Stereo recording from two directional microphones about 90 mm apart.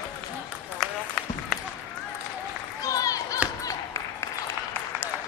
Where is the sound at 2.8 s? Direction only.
40° left (ahead or behind).